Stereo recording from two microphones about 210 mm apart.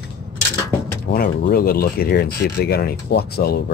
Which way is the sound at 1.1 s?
45° left (ahead or behind).